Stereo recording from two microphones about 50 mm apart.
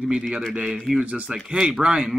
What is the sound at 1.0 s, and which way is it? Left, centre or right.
Speech, right.